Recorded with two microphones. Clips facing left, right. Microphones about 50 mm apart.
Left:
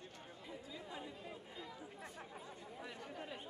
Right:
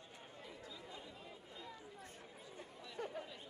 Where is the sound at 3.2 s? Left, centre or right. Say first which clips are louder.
Left 1 dB; left.